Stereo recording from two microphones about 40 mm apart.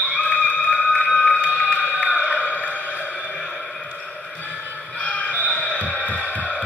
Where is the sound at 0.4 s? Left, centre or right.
Left.